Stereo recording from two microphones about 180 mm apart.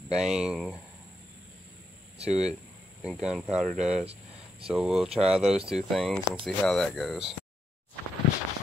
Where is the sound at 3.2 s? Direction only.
Centre (ahead or behind).